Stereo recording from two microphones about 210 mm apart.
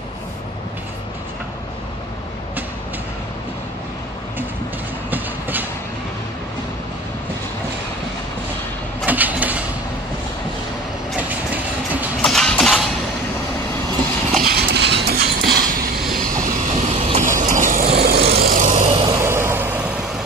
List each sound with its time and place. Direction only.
5.1 s train: 10° right (ahead or behind)
9.0 s vehicle: 10° right (ahead or behind)
11.1 s vehicle: 10° right (ahead or behind)
14.4 s clip-clop: 50° right (ahead or behind)
15.0 s train: 50° right (ahead or behind)
16.4 s vehicle: 35° right (ahead or behind)
19.1 s vehicle: 10° right (ahead or behind)